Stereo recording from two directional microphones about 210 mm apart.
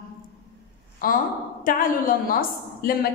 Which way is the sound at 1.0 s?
40° left (ahead or behind).